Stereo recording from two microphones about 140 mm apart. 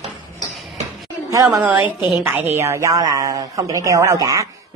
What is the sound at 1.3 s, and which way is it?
A woman's voice, 20° right (ahead or behind).